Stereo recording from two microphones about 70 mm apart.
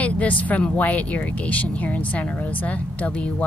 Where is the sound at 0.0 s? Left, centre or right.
Centre.